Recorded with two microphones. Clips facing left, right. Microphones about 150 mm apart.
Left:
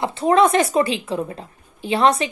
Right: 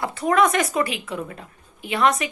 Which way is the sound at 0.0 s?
25° left (ahead or behind).